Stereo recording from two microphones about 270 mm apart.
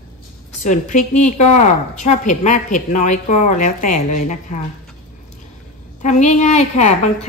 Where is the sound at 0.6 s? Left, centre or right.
Left.